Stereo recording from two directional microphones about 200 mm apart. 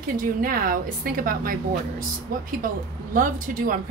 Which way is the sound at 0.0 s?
45° right (ahead or behind).